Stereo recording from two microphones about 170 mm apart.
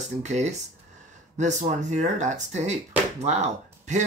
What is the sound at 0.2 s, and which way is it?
Speech, 40° right (ahead or behind).